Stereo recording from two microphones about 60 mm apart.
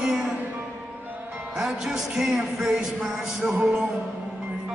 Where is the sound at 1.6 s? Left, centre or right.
Centre.